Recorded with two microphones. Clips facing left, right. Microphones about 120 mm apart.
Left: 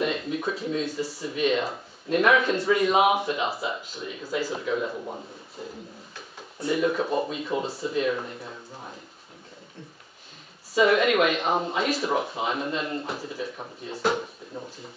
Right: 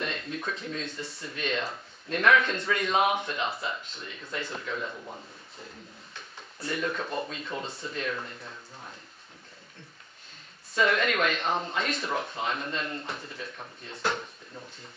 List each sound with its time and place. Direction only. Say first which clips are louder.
0.0 s speech: left 7 dB; 5° left (ahead or behind)
4.9 s a man's voice: left 7 dB; 20° left (ahead or behind)
6.6 s speech: left 7 dB; 10° left (ahead or behind)
10.7 s speech: left 6 dB; 5° left (ahead or behind)